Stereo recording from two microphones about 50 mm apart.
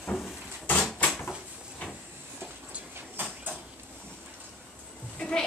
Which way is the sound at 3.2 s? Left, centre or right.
Right.